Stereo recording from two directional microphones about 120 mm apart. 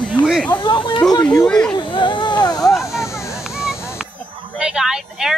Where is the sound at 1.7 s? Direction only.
45° left (ahead or behind).